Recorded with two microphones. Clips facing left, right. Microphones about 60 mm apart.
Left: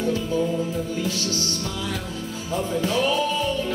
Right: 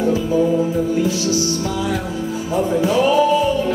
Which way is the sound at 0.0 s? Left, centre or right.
Centre.